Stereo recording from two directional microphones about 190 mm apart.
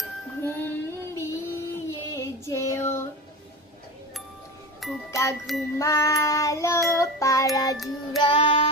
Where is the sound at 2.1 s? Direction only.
15° left (ahead or behind).